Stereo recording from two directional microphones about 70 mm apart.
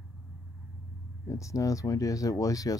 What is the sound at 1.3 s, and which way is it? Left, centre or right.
Speech, left.